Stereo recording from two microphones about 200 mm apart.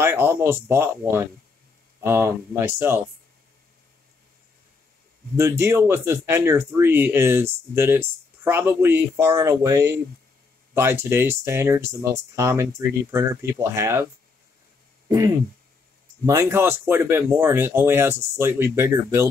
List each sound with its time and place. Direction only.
0.0 s speech: 10° right (ahead or behind)
5.3 s speech: 15° right (ahead or behind)
15.0 s speech: 20° right (ahead or behind)